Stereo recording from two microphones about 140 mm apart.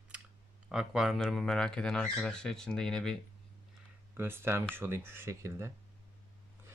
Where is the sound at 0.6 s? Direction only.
5° right (ahead or behind).